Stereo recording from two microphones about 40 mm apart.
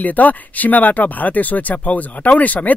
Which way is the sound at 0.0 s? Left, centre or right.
Left.